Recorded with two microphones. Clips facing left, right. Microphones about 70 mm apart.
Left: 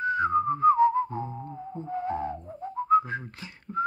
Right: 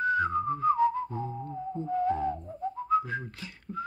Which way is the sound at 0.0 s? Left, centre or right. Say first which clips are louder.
Left 2 dB; left.